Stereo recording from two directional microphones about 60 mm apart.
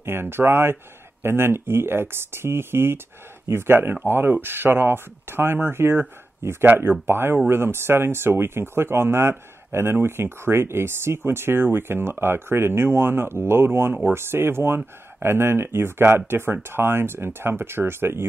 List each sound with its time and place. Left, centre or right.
0.0 s speech: right